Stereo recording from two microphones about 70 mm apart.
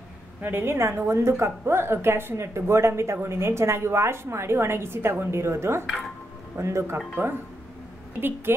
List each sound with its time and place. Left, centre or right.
0.4 s a woman's voice: right
8.5 s a woman's voice: right